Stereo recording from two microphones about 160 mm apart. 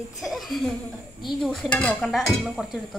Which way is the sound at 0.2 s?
Centre (ahead or behind).